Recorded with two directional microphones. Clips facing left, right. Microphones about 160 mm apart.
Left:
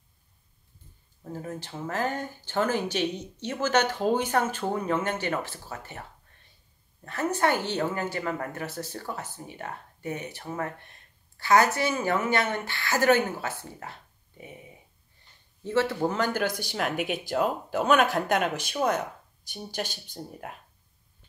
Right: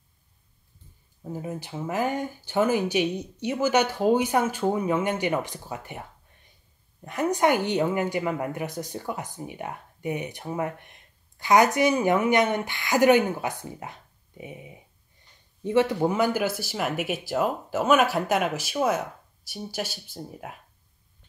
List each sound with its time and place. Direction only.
1.2 s a woman's voice: 10° right (ahead or behind)
7.1 s a woman's voice: 15° right (ahead or behind)